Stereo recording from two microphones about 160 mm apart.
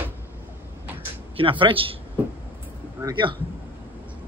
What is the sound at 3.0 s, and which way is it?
Speech, 30° right (ahead or behind).